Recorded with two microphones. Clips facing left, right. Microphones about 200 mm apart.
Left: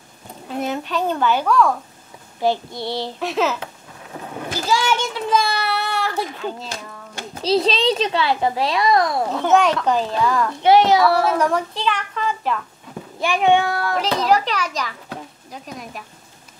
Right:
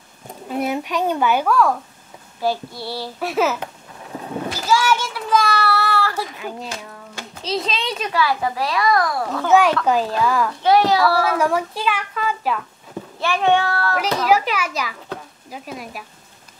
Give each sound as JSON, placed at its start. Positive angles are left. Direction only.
{"t": 0.6, "sound": "a sound", "side_deg": -10}
{"t": 2.4, "sound": "a child's voice", "side_deg": 20}
{"t": 3.2, "sound": "a child's voice", "side_deg": -10}
{"t": 4.6, "sound": "child singing", "side_deg": 20}
{"t": 6.4, "sound": "a child's voice", "side_deg": -10}
{"t": 7.4, "sound": "a child's voice", "side_deg": 35}
{"t": 9.5, "sound": "a woman's voice", "side_deg": -5}
{"t": 10.6, "sound": "a child's voice", "side_deg": 20}
{"t": 11.3, "sound": "a woman's voice", "side_deg": -5}
{"t": 13.2, "sound": "a child's voice", "side_deg": 15}
{"t": 13.9, "sound": "a child's voice", "side_deg": -5}